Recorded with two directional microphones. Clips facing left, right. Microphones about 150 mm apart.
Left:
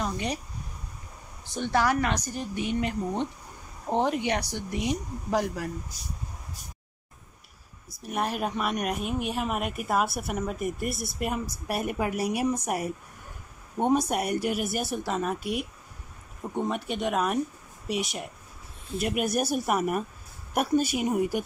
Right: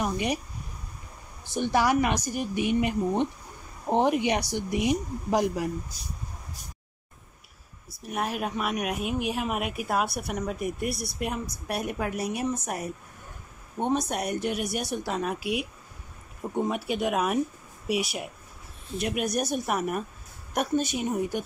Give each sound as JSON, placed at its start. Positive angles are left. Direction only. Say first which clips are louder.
{"t": 0.0, "sound": "speech", "louder": "right 3 dB", "side_deg": -15}
{"t": 1.5, "sound": "speech", "louder": "right 2 dB", "side_deg": -15}
{"t": 7.9, "sound": "speech", "louder": "left 1 dB", "side_deg": 0}